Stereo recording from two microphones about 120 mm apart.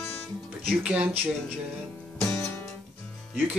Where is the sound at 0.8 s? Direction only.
10° right (ahead or behind).